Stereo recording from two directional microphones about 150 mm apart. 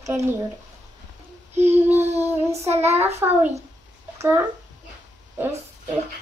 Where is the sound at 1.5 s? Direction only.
45° right (ahead or behind).